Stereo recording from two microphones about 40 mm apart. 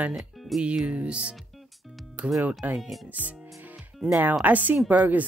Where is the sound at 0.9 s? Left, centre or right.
Right.